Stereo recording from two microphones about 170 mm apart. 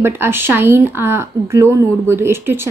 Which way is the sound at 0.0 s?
15° right (ahead or behind).